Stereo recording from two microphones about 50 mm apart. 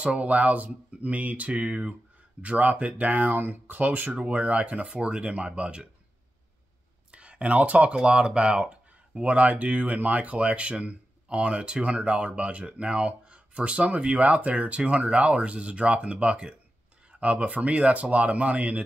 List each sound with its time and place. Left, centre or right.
0.0 s speech: right
7.1 s speech: right